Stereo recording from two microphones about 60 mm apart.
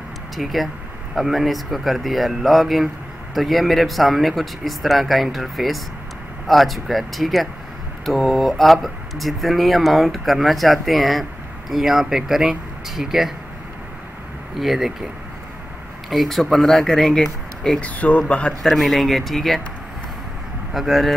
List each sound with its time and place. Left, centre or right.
0.4 s speech: centre
14.6 s speech: centre
16.1 s speech: centre
17.7 s speech: left
18.6 s speech: centre
20.7 s speech: centre